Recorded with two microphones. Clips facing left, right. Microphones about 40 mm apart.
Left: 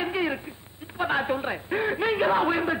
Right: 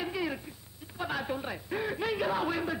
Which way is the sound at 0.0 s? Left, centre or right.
Left.